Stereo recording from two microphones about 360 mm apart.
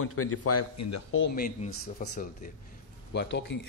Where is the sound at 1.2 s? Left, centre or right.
Left.